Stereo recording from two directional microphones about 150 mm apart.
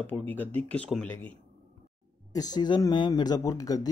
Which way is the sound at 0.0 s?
10° left (ahead or behind).